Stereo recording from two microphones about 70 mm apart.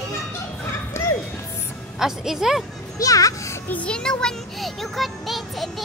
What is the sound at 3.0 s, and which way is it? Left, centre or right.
Speech, left.